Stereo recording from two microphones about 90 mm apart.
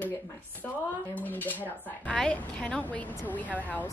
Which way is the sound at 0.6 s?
20° left (ahead or behind).